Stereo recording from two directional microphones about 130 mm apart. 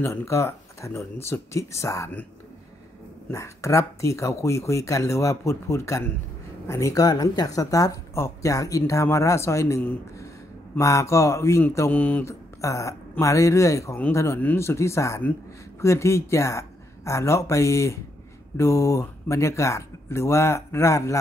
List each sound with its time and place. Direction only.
0.0 s speech: 20° left (ahead or behind)
3.3 s speech: 20° left (ahead or behind)
12.6 s speech: 25° left (ahead or behind)